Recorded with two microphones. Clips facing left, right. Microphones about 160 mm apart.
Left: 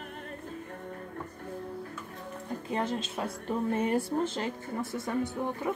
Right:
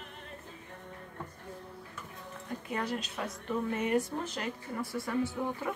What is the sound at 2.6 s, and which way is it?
A woman's voice, 30° left (ahead or behind).